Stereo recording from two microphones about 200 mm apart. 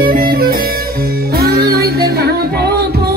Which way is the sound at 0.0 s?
45° right (ahead or behind).